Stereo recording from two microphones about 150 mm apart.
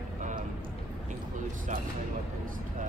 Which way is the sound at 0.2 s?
55° right (ahead or behind).